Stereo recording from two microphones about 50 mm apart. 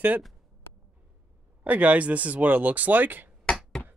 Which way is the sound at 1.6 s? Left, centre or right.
Right.